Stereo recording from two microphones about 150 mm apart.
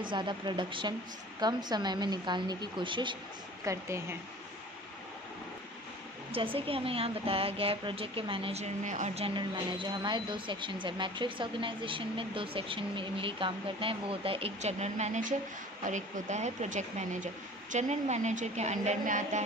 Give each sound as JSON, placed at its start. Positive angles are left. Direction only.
{"t": 0.1, "sound": "speech", "side_deg": -30}
{"t": 3.6, "sound": "speech", "side_deg": -20}
{"t": 6.3, "sound": "speech", "side_deg": -35}
{"t": 8.8, "sound": "speech", "side_deg": -50}